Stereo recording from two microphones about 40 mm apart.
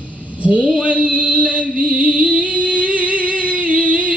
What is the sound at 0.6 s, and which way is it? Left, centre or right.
Mantra, centre.